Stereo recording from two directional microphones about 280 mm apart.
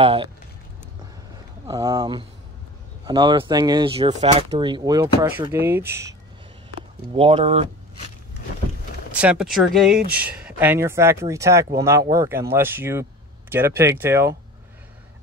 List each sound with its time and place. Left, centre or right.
0.0 s speech: centre
1.7 s speech: centre
7.2 s speech: right
9.1 s speech: centre